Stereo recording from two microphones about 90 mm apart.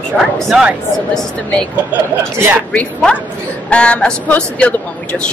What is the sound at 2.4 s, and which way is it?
Speech, 20° right (ahead or behind).